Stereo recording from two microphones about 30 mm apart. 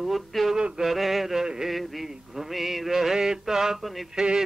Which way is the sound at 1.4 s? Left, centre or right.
Centre.